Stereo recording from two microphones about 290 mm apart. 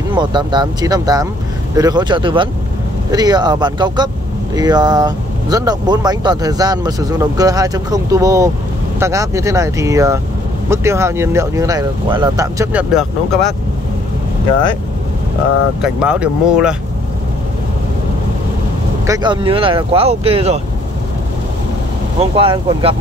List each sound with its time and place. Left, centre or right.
0.1 s speech: centre
15.8 s speech: centre
19.0 s speech: centre
22.3 s speech: centre